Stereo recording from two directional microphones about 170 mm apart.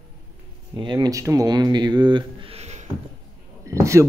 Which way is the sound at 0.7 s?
25° right (ahead or behind).